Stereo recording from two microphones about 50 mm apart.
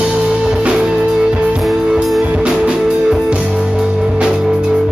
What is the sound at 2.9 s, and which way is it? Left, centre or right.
Music, centre.